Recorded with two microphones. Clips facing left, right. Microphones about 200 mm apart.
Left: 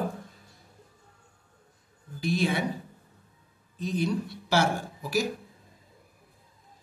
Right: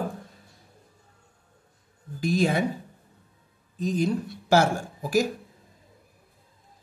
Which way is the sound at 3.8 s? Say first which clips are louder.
Right 3 dB; 45° right (ahead or behind).